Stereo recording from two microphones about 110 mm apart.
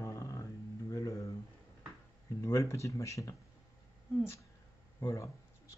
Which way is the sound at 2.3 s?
25° left (ahead or behind).